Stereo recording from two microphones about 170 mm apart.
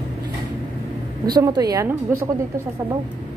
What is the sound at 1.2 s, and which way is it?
A woman's voice, 25° right (ahead or behind).